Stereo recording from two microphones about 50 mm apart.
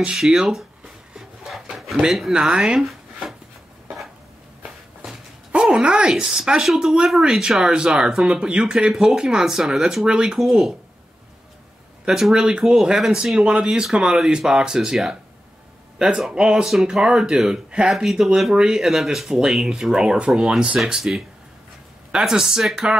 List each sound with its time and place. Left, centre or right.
0.2 s drawer open or close: centre
2.3 s speech: centre
2.8 s a sound: centre
5.5 s speech: centre
10.4 s speech: centre
12.1 s speech: centre
16.2 s speech: centre